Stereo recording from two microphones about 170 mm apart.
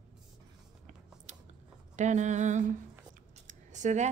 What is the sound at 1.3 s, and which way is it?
Scissors, 45° right (ahead or behind).